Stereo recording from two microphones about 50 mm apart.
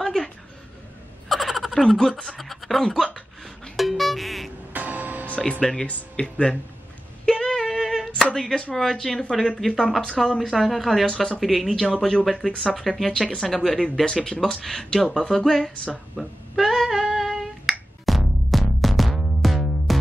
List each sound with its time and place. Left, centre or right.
0.0 s a sound: centre
1.3 s a sound: centre
1.8 s speech: centre
2.2 s speech: centre
3.7 s music: centre
4.7 s music: right
5.6 s speech: centre
5.9 s speech: left
7.2 s female singing: centre
8.4 s speech: centre
13.1 s speech: centre
13.4 s speech: centre
16.2 s finger snapping: centre